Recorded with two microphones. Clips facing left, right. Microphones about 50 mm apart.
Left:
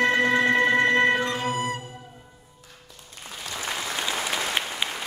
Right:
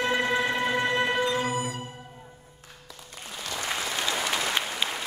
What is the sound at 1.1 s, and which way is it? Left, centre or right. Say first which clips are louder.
Music: even; left.